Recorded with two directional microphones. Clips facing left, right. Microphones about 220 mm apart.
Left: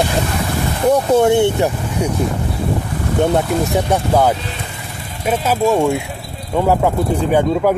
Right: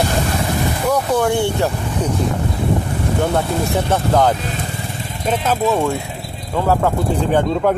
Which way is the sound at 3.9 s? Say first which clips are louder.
Even; 10° left (ahead or behind).